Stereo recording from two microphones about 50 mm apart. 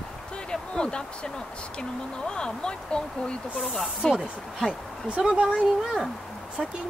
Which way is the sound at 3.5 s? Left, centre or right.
Centre.